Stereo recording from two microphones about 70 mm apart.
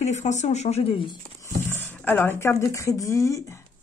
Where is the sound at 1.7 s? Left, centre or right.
Left.